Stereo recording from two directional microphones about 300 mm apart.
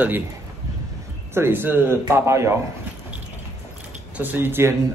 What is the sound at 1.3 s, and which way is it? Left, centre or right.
Speech, centre.